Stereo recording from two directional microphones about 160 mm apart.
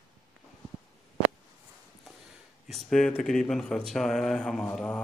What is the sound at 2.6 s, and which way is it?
Speech, centre (ahead or behind).